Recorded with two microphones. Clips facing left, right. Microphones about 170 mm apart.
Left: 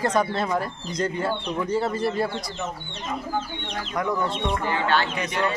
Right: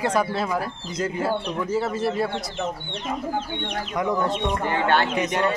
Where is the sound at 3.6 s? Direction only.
20° right (ahead or behind).